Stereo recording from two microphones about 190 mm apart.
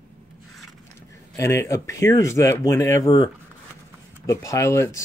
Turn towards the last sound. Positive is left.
turn(degrees=15)  # may be behind; listen again after turning